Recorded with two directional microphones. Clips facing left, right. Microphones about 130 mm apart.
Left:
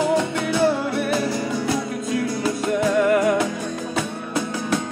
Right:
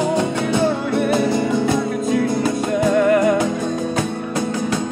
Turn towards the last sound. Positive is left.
turn(degrees=5)  # may be behind; listen again after turning